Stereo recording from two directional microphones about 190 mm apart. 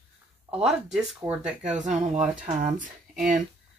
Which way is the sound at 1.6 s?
40° right (ahead or behind).